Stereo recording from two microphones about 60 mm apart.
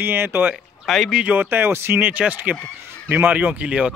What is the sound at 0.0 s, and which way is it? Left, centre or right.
Speech, right.